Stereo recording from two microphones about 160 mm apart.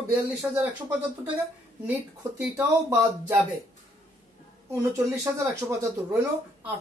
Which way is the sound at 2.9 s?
15° right (ahead or behind).